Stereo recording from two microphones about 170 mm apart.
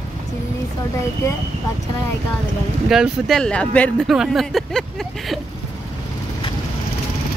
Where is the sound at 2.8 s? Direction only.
Centre (ahead or behind).